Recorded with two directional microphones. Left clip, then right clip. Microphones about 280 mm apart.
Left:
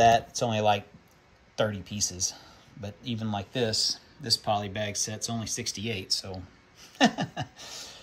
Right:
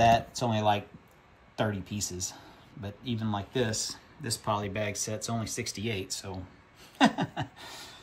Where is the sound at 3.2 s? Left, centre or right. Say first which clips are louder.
Left 1 dB; centre.